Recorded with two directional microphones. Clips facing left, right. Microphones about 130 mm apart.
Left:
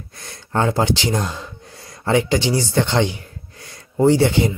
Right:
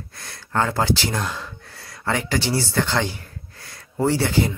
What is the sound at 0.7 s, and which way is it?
Speech, 20° left (ahead or behind).